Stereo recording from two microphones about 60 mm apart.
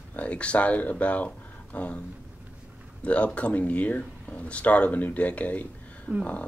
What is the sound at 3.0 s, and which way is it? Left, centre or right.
Speech, left.